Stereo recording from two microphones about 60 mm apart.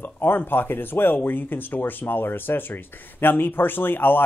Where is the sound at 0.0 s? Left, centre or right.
Left.